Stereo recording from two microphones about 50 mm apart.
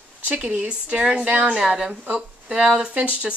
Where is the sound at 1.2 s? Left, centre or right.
Right.